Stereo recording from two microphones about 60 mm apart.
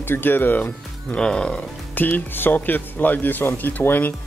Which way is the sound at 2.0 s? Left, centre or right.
Left.